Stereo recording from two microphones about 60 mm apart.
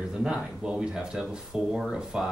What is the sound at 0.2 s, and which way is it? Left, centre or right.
Speech, centre.